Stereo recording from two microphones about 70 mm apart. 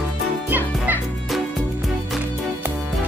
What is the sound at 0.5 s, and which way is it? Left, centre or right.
Music, right.